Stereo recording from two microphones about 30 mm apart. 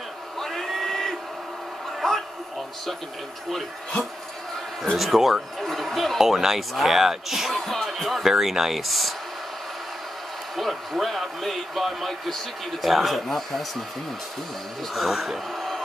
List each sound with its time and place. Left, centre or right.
0.4 s a sound: centre
4.9 s speech: centre
6.1 s speech: centre
7.0 s speech: centre
7.5 s speech: centre
8.2 s speech: centre
10.5 s speech: centre
13.3 s speech: centre
15.0 s speech: centre